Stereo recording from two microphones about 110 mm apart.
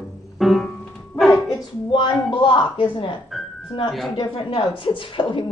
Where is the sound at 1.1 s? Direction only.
Centre (ahead or behind).